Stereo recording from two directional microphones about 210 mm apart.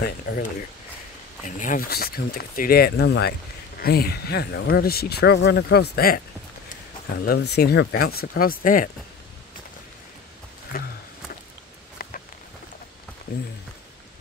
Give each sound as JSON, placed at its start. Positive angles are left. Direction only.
{"t": 0.0, "sound": "speech", "side_deg": 45}
{"t": 1.6, "sound": "speech", "side_deg": 40}
{"t": 7.2, "sound": "speech", "side_deg": 50}